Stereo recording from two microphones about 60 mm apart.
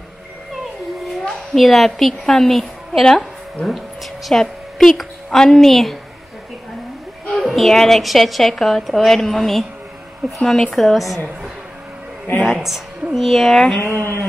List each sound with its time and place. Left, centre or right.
1.2 s a woman's voice: centre
7.3 s a woman's voice: centre
12.4 s a woman's voice: centre
13.8 s speech: right